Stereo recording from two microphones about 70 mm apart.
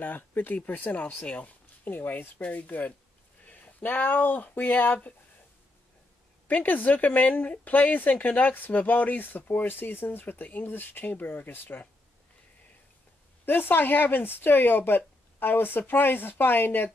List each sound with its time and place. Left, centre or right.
0.0 s speech: left
6.4 s speech: left
13.5 s speech: left